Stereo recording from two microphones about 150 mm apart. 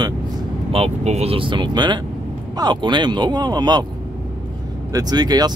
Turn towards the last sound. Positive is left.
turn(degrees=-25)  # may be behind; listen again after turning